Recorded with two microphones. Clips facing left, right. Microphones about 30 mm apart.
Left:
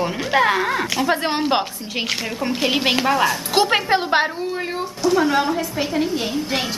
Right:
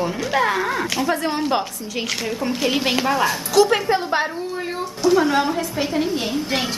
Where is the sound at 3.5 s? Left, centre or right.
Left.